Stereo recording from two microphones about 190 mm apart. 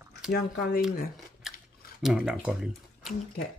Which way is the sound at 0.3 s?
50° left (ahead or behind).